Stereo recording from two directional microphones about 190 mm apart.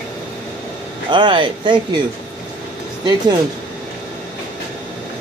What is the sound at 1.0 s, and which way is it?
Speech, 25° right (ahead or behind).